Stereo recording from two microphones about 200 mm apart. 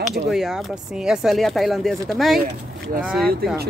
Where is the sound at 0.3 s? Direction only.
Centre (ahead or behind).